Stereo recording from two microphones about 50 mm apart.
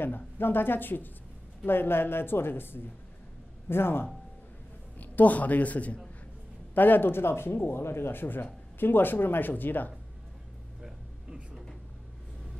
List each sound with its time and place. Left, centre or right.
0.0 s speech: left
4.9 s a man's voice: left
6.7 s speech: left
10.8 s a sound: centre